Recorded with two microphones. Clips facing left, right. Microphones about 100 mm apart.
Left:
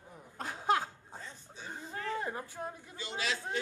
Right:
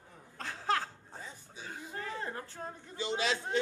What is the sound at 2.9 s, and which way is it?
Speech, 25° right (ahead or behind).